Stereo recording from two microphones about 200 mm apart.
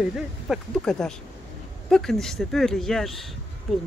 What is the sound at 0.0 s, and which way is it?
Speech, centre (ahead or behind).